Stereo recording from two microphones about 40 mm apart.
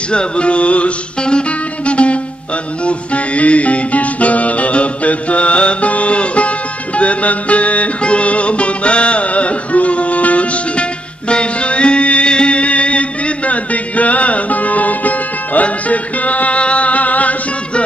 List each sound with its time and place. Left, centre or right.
0.1 s music: left